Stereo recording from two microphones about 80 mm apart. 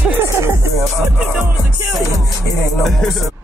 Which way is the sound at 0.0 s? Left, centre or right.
Right.